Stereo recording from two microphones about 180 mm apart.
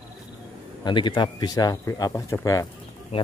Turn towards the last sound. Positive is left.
turn(degrees=30)  # may be behind; listen again after turning